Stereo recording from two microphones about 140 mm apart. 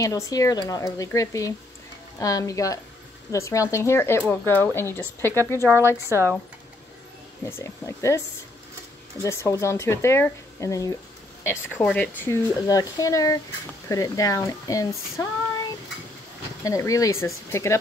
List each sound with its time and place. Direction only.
0.0 s speech: 25° left (ahead or behind)
6.0 s speech: 20° right (ahead or behind)
7.4 s speech: 20° left (ahead or behind)
9.2 s speech: 20° left (ahead or behind)
11.4 s speech: 10° left (ahead or behind)
12.6 s speech: 25° left (ahead or behind)
16.6 s speech: 25° left (ahead or behind)